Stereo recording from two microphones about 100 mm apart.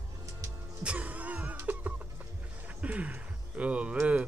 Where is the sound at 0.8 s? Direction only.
10° right (ahead or behind).